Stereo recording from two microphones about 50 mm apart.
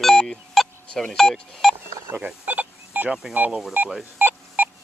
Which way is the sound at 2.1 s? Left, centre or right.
Right.